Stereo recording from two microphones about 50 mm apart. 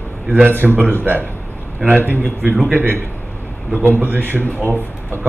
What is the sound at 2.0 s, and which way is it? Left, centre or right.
Speech, right.